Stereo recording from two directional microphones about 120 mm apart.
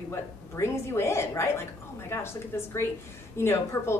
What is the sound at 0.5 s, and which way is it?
Speech, 20° left (ahead or behind).